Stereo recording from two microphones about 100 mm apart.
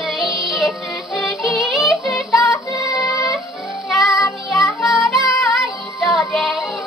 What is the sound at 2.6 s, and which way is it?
Music, 30° left (ahead or behind).